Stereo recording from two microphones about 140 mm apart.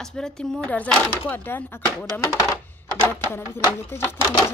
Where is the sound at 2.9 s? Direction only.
15° left (ahead or behind).